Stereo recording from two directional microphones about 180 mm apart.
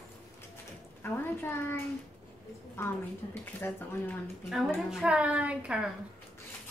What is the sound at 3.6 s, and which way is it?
Speech, 10° left (ahead or behind).